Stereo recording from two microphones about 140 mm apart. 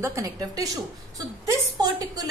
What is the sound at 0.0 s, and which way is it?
A woman's voice, 20° right (ahead or behind).